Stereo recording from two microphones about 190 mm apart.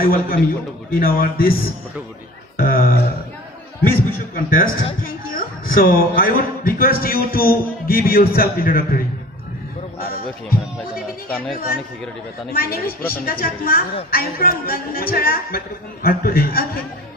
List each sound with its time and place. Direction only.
0.0 s a man's voice: 50° left (ahead or behind)
2.5 s a sound: 50° left (ahead or behind)
4.5 s a man's voice: 50° left (ahead or behind)
12.5 s a man's voice: 50° left (ahead or behind)